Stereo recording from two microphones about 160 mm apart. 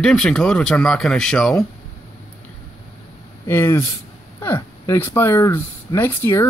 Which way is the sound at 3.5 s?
15° left (ahead or behind).